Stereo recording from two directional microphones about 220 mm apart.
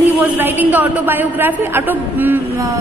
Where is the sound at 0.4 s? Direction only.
10° right (ahead or behind).